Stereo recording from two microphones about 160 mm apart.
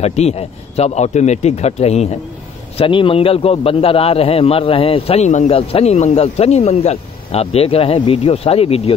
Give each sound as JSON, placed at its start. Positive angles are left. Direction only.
{"t": 0.0, "sound": "a man's voice", "side_deg": 40}